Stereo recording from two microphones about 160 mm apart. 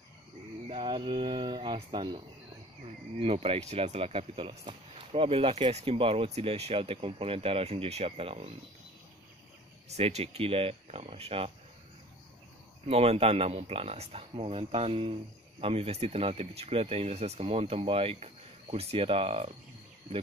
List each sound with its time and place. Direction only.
0.7 s speech: 30° right (ahead or behind)
9.8 s speech: 40° right (ahead or behind)
12.8 s speech: 40° right (ahead or behind)